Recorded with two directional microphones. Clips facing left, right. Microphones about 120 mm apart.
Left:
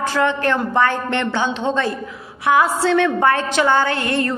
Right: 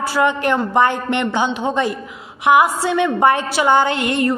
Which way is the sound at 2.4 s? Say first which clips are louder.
Right 3 dB; 15° right (ahead or behind).